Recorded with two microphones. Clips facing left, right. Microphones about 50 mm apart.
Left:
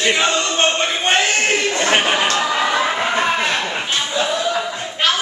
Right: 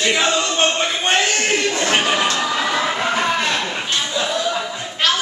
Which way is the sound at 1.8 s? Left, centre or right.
Left.